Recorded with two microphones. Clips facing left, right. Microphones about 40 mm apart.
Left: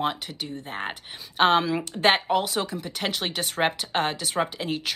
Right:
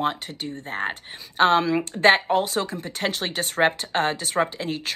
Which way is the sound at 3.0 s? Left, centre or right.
Centre.